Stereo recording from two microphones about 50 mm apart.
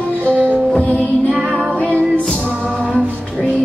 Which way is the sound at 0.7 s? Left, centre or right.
Left.